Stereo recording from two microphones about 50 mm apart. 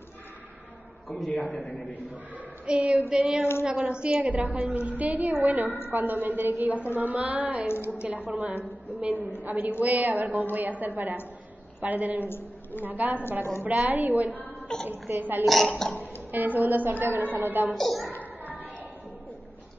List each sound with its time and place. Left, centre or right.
1.1 s a man's voice: left
2.6 s a woman's voice: right
4.3 s a woman's voice: right
7.6 s a woman's voice: left
8.1 s a woman's voice: right
12.3 s a sound: left
12.8 s a woman's voice: right
15.4 s a woman's voice: centre
16.0 s a woman's voice: right
17.7 s a woman's voice: centre
18.1 s a sound: left